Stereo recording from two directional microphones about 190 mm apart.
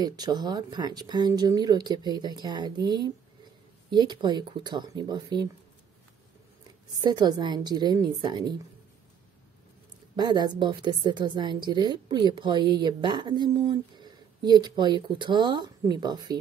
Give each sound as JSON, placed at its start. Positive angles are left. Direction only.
{"t": 0.0, "sound": "a woman's voice", "side_deg": -20}
{"t": 7.0, "sound": "a woman's voice", "side_deg": -20}
{"t": 10.1, "sound": "a woman's voice", "side_deg": -20}